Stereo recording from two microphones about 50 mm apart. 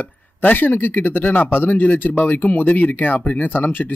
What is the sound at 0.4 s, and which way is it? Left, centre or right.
Speech, left.